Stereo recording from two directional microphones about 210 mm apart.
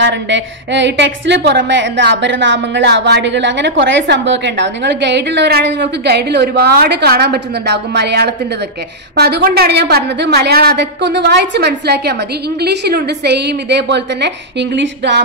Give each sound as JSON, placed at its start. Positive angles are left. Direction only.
{"t": 0.0, "sound": "a woman's voice", "side_deg": -60}